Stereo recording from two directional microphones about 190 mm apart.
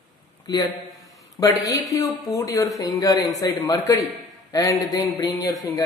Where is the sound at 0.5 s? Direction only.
20° left (ahead or behind).